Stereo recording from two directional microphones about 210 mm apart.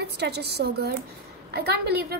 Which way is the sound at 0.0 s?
50° right (ahead or behind).